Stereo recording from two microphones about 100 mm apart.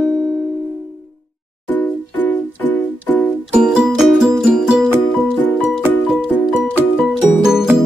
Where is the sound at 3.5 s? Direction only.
10° right (ahead or behind).